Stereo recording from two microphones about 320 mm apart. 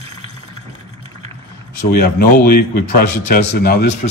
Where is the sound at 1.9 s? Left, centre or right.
Left.